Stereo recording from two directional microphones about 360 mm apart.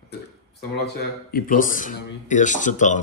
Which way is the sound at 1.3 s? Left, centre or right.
Left.